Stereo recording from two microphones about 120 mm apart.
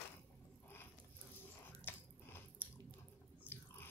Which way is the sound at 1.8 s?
20° left (ahead or behind).